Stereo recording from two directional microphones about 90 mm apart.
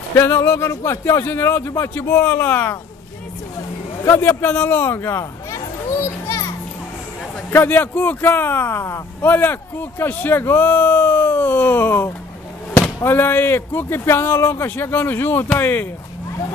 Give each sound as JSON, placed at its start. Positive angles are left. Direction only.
{"t": 0.1, "sound": "speech", "side_deg": 30}
{"t": 4.3, "sound": "speech", "side_deg": 20}
{"t": 7.5, "sound": "speech", "side_deg": 20}